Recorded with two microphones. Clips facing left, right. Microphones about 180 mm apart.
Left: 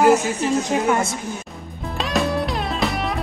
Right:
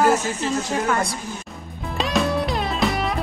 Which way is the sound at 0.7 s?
20° left (ahead or behind).